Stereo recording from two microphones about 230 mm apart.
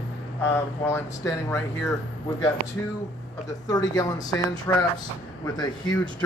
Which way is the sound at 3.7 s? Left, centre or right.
Centre.